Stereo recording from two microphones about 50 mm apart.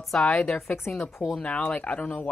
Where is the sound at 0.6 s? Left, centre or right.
Left.